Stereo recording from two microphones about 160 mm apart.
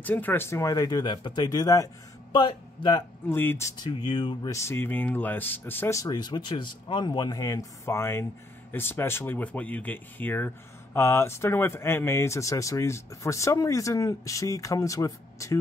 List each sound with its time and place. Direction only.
0.0 s speech: 10° left (ahead or behind); by 3.0 s 30° left (ahead or behind)
3.3 s speech: 15° left (ahead or behind)